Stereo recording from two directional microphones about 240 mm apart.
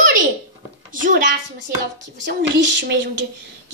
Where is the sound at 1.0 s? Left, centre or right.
Right.